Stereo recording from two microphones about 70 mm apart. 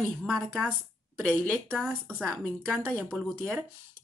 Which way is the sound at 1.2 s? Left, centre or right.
Centre.